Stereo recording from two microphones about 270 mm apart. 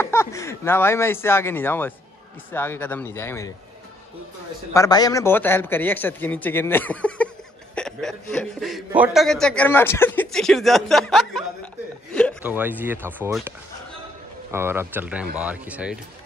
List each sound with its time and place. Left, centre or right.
0.0 s a man's voice: centre
4.7 s a man's voice: centre
14.5 s a man's voice: centre